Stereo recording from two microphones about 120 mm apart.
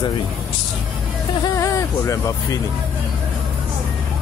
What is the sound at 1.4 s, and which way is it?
Speech, 25° left (ahead or behind).